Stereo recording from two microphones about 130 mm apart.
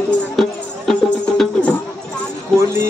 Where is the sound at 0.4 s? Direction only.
Centre (ahead or behind).